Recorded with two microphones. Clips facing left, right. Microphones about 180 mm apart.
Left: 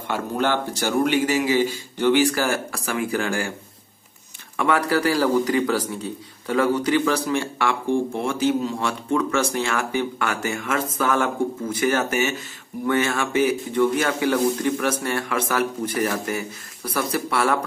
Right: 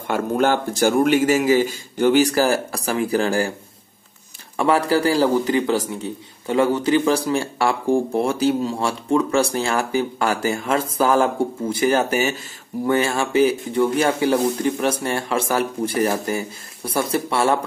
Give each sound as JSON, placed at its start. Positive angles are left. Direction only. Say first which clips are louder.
{"t": 0.0, "sound": "speech", "louder": "right 4 dB", "side_deg": -45}
{"t": 4.6, "sound": "speech", "louder": "right 3 dB", "side_deg": -30}